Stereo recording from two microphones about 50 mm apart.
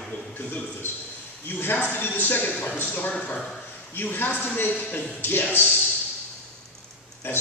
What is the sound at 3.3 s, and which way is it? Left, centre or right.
Speech, centre.